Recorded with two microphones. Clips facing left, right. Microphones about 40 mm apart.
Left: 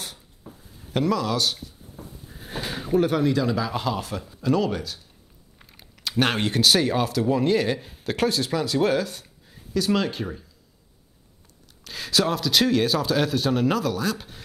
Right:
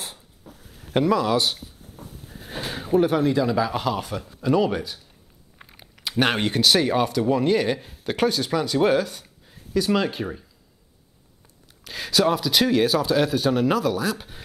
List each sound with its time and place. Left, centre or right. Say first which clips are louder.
0.6 s a sound: right 2 dB; right
0.9 s a man's voice: right 3 dB; centre
2.8 s a man's voice: right 2 dB; centre
11.8 s a man's voice: right 3 dB; centre